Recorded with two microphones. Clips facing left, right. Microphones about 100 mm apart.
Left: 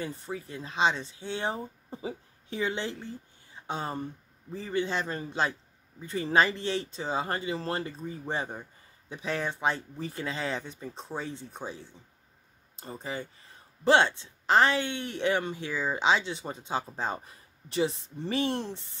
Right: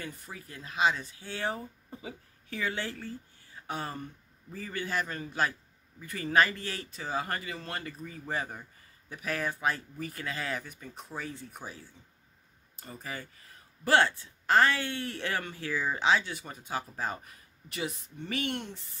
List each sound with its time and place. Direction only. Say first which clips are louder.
0.0 s speech: left 7 dB; 30° left (ahead or behind)